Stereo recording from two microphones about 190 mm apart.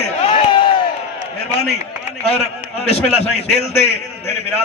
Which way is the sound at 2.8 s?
35° left (ahead or behind).